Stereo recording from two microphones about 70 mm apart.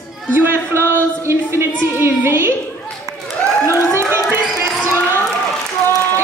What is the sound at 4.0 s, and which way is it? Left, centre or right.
Crowd, right.